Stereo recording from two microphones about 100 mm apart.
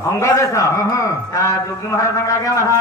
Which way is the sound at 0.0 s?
30° left (ahead or behind).